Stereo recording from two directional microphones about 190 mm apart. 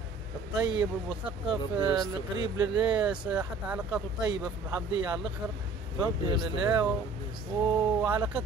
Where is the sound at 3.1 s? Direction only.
5° right (ahead or behind).